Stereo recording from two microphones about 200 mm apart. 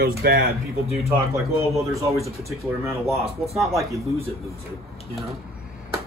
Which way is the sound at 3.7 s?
15° right (ahead or behind).